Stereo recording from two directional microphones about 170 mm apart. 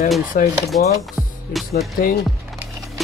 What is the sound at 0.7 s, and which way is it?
Speech, 45° left (ahead or behind).